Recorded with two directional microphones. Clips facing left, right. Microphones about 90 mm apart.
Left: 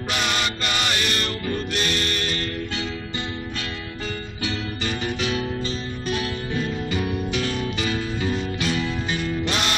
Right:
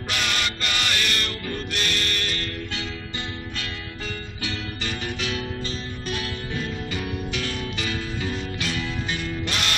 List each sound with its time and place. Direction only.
0.1 s music: 25° left (ahead or behind)
4.4 s music: 25° left (ahead or behind)